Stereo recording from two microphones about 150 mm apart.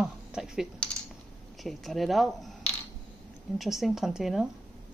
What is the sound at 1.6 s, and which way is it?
Speech, centre (ahead or behind).